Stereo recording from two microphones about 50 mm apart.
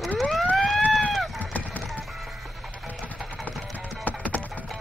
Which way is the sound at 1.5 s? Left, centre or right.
Left.